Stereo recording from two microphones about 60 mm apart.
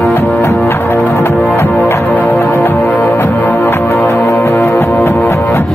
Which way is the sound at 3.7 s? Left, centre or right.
Left.